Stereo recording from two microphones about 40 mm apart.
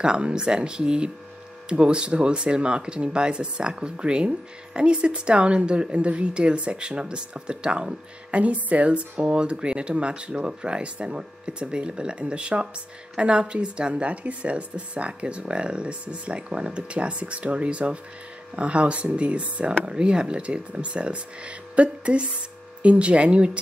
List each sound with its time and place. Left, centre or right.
0.0 s speech: right
8.3 s speech: right